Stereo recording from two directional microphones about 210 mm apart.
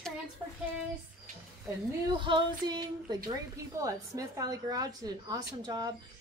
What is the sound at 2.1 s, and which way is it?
Female singing, 20° right (ahead or behind).